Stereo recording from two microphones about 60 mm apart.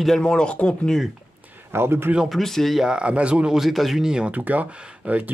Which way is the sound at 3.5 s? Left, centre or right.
Centre.